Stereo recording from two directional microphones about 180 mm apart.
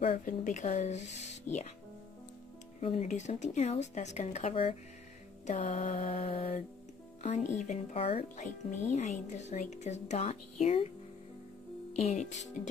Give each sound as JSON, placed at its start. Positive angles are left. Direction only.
{"t": 0.2, "sound": "speech", "side_deg": 45}
{"t": 2.8, "sound": "speech", "side_deg": 35}